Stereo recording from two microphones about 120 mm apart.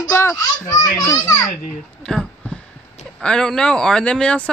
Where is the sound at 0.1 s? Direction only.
20° left (ahead or behind).